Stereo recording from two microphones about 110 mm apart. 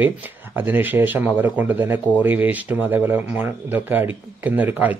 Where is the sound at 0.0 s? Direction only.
15° right (ahead or behind).